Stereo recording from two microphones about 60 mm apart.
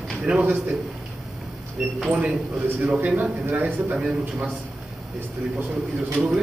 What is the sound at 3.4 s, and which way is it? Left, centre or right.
Speech, right.